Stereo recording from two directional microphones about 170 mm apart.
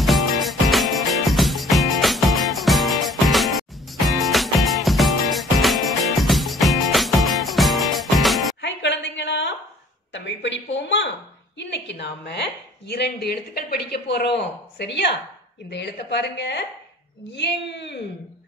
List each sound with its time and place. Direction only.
0.0 s music: centre (ahead or behind)
8.5 s a sound: 90° left
11.5 s a woman's voice: 90° left